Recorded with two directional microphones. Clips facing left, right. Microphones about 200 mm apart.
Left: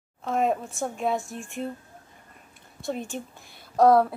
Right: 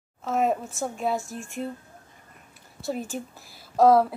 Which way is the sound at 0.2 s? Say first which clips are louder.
Even; 5° right (ahead or behind).